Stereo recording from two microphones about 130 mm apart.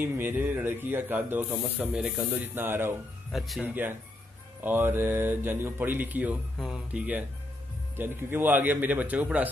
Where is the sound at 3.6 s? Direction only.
15° right (ahead or behind).